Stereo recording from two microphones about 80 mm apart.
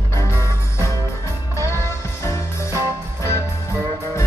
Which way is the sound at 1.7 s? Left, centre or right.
Left.